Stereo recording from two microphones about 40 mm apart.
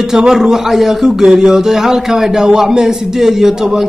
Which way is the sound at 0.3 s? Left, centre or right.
Centre.